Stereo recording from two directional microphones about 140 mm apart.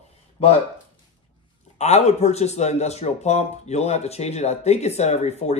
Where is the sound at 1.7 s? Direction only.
50° left (ahead or behind).